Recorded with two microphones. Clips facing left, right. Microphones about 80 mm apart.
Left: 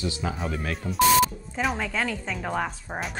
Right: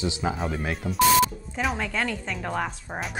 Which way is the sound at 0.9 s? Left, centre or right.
Centre.